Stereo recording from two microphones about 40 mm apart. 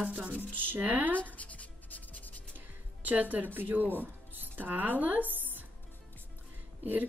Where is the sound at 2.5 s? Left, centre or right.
Right.